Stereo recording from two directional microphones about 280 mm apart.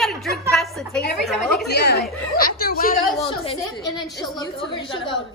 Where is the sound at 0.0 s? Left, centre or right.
Centre.